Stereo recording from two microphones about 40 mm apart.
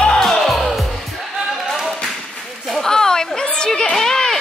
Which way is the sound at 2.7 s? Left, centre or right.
Centre.